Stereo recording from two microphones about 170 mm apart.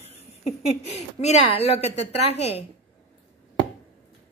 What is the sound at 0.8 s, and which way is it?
Speech, 40° left (ahead or behind).